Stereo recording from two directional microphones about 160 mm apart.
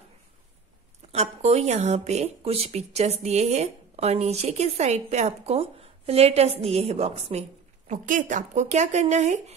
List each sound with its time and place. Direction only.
1.1 s speech: 40° right (ahead or behind)